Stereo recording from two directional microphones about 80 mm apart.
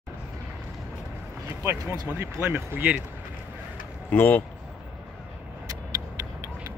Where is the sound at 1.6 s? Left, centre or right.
Right.